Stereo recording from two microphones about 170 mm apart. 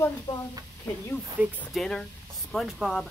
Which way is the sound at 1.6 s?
5° left (ahead or behind).